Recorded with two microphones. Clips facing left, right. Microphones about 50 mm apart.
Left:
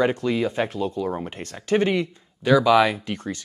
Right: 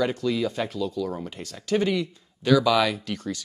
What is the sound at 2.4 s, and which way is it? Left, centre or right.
Speech, centre.